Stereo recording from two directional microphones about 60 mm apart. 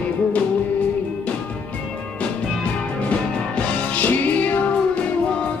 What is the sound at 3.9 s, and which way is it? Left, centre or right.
Music, left.